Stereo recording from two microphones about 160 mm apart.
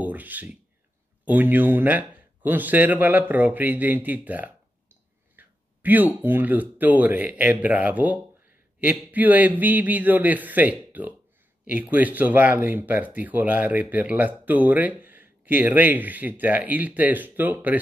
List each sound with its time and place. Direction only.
0.0 s speech: 10° right (ahead or behind)
5.3 s a sound: 10° right (ahead or behind)
6.2 s speech: 10° right (ahead or behind)